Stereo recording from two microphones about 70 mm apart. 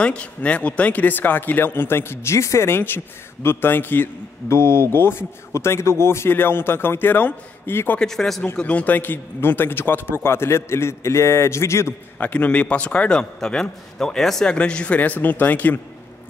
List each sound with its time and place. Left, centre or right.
0.0 s a man's voice: centre; by 8.0 s left
8.0 s a man's voice: centre
8.5 s a man's voice: left
12.2 s a man's voice: left